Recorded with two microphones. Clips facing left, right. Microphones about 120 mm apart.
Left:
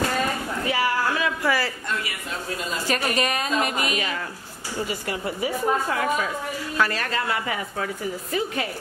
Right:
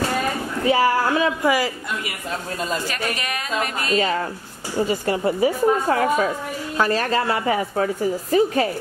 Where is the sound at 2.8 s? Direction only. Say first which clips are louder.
Left 3 dB; 30° left (ahead or behind).